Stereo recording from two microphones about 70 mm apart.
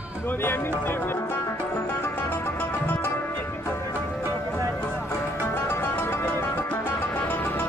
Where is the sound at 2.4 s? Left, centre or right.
Left.